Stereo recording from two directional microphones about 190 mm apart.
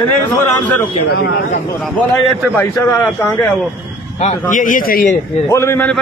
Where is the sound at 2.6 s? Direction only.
15° left (ahead or behind).